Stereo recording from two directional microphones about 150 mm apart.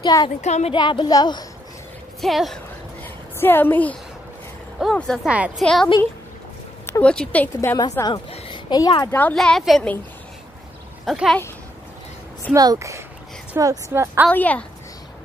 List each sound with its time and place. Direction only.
0.0 s speech: 25° left (ahead or behind)
0.4 s speech: 50° left (ahead or behind)
0.7 s speech: 30° left (ahead or behind)
2.2 s speech: centre (ahead or behind)
3.0 s a sound: 15° left (ahead or behind)
4.9 s speech: 5° left (ahead or behind)
6.9 s speech: 10° left (ahead or behind)
7.7 s speech: 25° left (ahead or behind)
8.3 s a sound: 30° left (ahead or behind)
9.1 s speech: 10° left (ahead or behind)
11.1 s speech: centre (ahead or behind)
12.5 s a woman's voice: 20° right (ahead or behind)
14.3 s speech: 10° left (ahead or behind)